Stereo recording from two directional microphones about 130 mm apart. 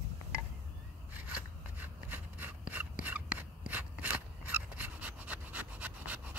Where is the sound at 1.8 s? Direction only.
15° right (ahead or behind).